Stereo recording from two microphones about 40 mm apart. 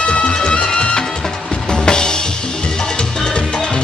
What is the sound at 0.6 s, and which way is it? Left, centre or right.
Music, left.